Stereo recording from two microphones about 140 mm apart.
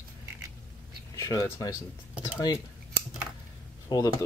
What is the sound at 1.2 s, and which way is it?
Speech, 25° left (ahead or behind).